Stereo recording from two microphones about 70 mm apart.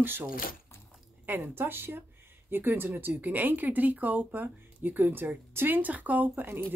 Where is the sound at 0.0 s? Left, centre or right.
Right.